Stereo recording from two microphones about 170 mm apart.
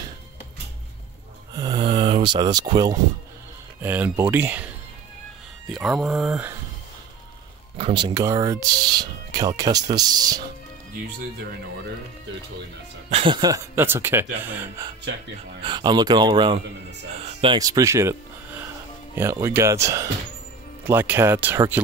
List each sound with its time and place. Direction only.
1.6 s speech: 25° right (ahead or behind)
3.8 s speech: 10° right (ahead or behind)
7.7 s speech: 30° right (ahead or behind)
13.1 s speech: 30° right (ahead or behind); by 14.9 s 15° right (ahead or behind)
15.6 s speech: 25° right (ahead or behind)
19.4 s speech: 15° right (ahead or behind)